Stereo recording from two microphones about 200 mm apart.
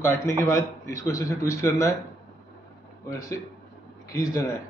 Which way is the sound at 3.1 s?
15° left (ahead or behind).